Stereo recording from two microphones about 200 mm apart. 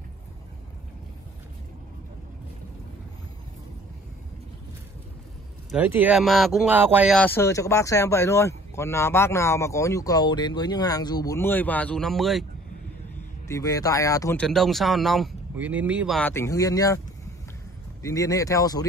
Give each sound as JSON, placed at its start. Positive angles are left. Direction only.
{"t": 5.7, "sound": "speech", "side_deg": -10}
{"t": 7.2, "sound": "speech", "side_deg": 10}
{"t": 13.5, "sound": "speech", "side_deg": 15}
{"t": 14.4, "sound": "speech", "side_deg": 0}
{"t": 16.2, "sound": "speech", "side_deg": 10}
{"t": 18.0, "sound": "speech", "side_deg": 15}